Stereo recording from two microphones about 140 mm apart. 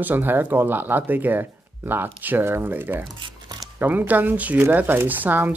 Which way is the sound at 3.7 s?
15° right (ahead or behind).